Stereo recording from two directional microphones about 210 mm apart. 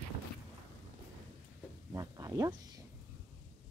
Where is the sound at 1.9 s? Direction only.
15° right (ahead or behind).